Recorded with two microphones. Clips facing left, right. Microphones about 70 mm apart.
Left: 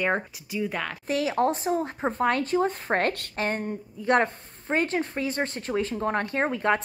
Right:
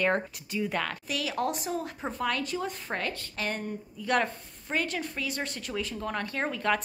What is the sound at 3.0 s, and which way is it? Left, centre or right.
Speech, left.